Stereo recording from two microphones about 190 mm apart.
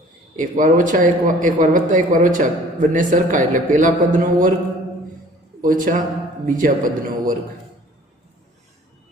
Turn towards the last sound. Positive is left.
turn(degrees=-45)  # may be behind; listen again after turning